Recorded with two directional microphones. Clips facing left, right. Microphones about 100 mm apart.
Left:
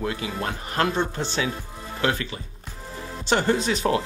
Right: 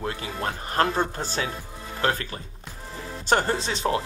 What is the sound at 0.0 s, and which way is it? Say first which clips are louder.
Speech: left 1 dB; 35° right (ahead or behind).